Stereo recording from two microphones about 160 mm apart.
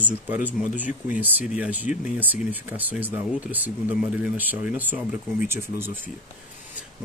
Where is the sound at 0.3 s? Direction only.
10° right (ahead or behind).